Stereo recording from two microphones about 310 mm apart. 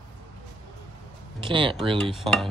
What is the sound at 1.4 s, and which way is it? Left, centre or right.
Speech, centre.